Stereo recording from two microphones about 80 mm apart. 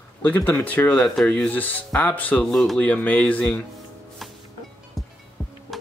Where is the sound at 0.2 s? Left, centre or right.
Left.